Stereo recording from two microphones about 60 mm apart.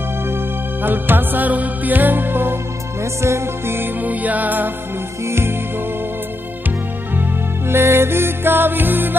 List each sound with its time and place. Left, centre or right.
0.8 s music: right
3.2 s music: right
5.2 s music: right
7.2 s music: right